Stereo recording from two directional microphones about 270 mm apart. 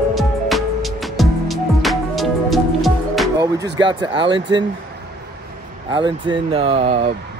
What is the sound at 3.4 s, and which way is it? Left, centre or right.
Speech, centre.